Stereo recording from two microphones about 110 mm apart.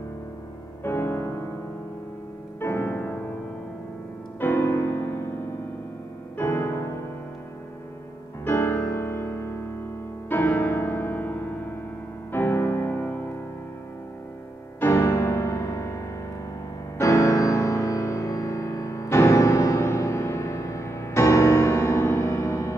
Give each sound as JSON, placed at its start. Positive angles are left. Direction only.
{"t": 0.8, "sound": "music", "side_deg": 20}
{"t": 2.6, "sound": "music", "side_deg": 20}
{"t": 4.4, "sound": "music", "side_deg": 20}
{"t": 6.3, "sound": "piano", "side_deg": 25}
{"t": 8.5, "sound": "music", "side_deg": 20}
{"t": 14.8, "sound": "music", "side_deg": 25}